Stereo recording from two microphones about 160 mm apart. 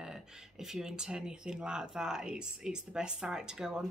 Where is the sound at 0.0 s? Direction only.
5° right (ahead or behind).